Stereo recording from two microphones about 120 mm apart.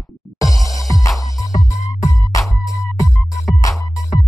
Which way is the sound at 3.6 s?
30° left (ahead or behind).